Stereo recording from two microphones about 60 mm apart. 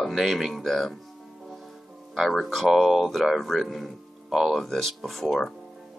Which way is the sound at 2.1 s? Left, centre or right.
Centre.